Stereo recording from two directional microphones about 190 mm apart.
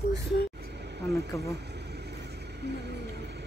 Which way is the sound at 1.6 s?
60° right (ahead or behind).